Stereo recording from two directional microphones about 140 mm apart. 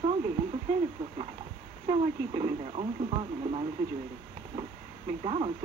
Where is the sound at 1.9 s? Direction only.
40° right (ahead or behind).